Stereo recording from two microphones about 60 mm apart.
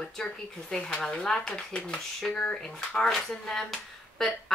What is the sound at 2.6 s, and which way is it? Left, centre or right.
Speech, centre.